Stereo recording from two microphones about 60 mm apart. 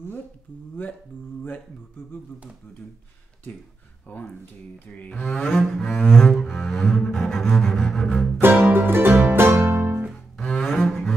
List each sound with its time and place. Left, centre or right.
4.1 s cattle: centre
5.6 s double bass: centre
6.0 s cello: centre
6.4 s double bass: centre
8.5 s music: right
9.6 s guitar: right
10.3 s cello: centre
10.7 s double bass: centre